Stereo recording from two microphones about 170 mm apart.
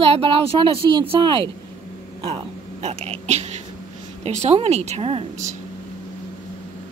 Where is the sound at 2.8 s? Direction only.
40° right (ahead or behind).